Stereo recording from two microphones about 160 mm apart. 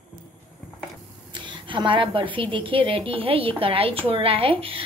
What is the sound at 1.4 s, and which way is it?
Speech, 30° right (ahead or behind).